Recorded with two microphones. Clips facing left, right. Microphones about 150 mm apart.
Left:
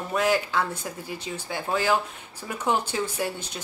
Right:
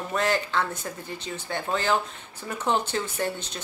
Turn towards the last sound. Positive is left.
turn(degrees=10)  # may be behind; listen again after turning